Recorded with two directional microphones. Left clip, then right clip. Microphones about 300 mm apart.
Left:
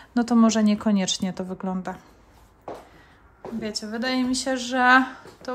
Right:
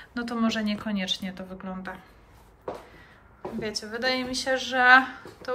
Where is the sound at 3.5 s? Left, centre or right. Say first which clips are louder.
Left 2 dB; centre.